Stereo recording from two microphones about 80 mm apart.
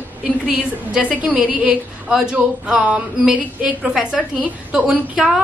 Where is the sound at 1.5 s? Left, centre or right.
Centre.